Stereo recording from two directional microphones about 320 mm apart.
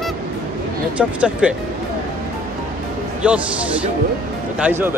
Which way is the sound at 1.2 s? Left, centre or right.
Centre.